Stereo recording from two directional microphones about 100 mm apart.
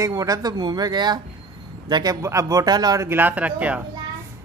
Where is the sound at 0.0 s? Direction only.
35° right (ahead or behind).